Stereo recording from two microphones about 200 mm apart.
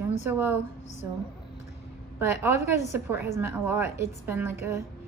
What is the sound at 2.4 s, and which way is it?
A woman's voice, 10° right (ahead or behind).